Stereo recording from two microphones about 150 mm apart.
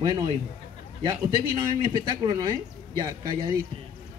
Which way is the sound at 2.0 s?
30° right (ahead or behind).